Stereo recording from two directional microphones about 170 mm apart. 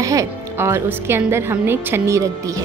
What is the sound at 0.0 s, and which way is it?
Music, 20° right (ahead or behind).